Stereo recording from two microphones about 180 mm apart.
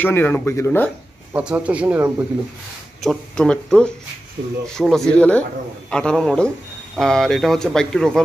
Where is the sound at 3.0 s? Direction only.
5° left (ahead or behind).